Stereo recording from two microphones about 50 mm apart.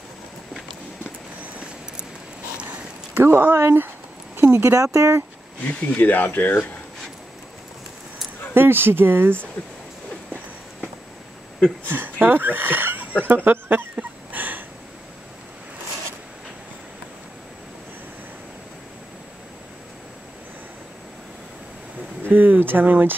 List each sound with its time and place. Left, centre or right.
3.2 s speech: right
5.9 s speech: left
8.5 s speech: right
11.9 s speech: right
13.9 s a sound: right
22.3 s speech: right